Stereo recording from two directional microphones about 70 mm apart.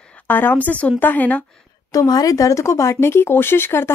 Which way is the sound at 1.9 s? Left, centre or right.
Left.